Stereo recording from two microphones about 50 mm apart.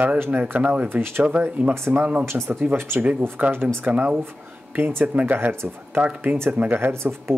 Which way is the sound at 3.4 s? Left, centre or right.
Right.